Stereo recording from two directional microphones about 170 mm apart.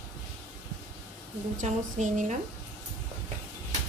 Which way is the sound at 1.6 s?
45° right (ahead or behind).